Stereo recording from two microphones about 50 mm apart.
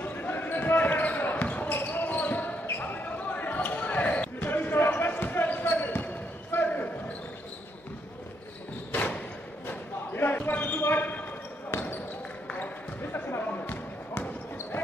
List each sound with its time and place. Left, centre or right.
0.0 s basketball bounce: left
1.7 s basketball bounce: left
8.9 s a sound: left
10.5 s basketball bounce: left
10.8 s basketball bounce: left
13.0 s a sound: left
13.5 s basketball bounce: left